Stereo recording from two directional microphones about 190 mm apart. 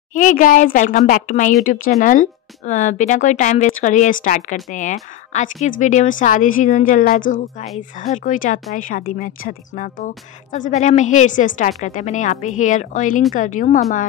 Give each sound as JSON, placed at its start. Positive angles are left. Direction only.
{"t": 0.1, "sound": "speech", "side_deg": 45}